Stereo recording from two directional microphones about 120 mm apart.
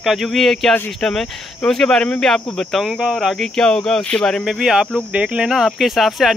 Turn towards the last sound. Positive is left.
turn(degrees=0)  # may be behind; listen again after turning